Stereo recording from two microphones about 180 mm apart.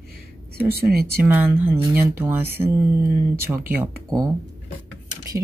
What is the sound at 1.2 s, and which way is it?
Speech, 10° right (ahead or behind).